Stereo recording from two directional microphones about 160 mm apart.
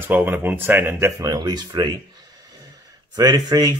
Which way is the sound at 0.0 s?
10° right (ahead or behind).